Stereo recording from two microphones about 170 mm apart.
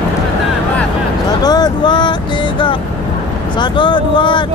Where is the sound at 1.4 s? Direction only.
25° left (ahead or behind).